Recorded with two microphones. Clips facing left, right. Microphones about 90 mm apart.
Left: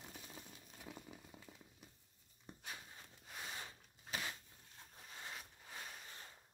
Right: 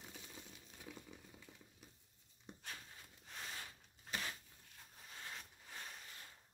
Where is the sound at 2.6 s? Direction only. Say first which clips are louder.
Left 2 dB; 10° left (ahead or behind).